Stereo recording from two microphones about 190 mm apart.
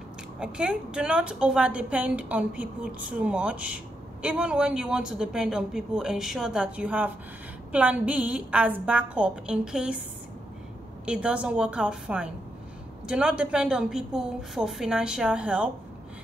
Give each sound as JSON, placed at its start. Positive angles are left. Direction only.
{"t": 0.4, "sound": "a woman's voice", "side_deg": -5}
{"t": 11.1, "sound": "a woman's voice", "side_deg": -5}